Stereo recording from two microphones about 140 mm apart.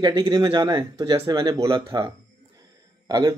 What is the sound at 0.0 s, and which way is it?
Speech, 30° right (ahead or behind).